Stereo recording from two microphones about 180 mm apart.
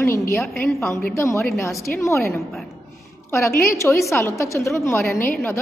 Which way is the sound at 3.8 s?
15° left (ahead or behind).